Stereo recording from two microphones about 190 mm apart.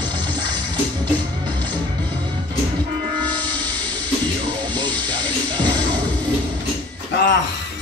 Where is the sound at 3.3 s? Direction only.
20° right (ahead or behind).